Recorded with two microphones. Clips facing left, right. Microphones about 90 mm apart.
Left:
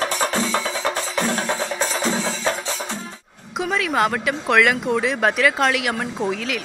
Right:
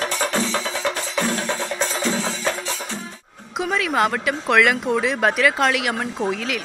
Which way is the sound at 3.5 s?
Centre (ahead or behind).